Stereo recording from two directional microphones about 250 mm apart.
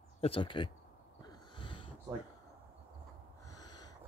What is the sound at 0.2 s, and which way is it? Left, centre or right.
Speech, left.